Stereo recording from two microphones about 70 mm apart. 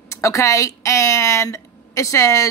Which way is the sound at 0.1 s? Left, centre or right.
Left.